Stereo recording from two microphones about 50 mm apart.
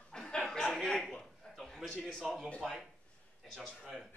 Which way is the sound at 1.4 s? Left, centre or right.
Centre.